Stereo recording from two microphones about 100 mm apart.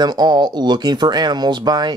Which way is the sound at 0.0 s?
45° right (ahead or behind).